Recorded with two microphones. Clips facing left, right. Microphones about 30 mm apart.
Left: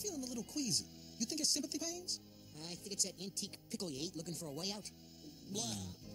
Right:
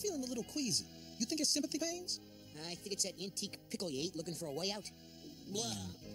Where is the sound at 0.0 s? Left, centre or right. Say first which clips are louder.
Right 4 dB; right.